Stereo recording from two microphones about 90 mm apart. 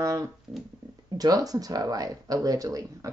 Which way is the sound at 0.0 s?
35° right (ahead or behind).